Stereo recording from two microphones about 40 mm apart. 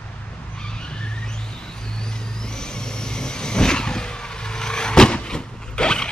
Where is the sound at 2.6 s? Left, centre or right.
Centre.